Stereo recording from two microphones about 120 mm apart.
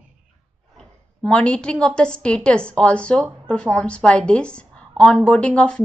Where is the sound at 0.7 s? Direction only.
10° left (ahead or behind).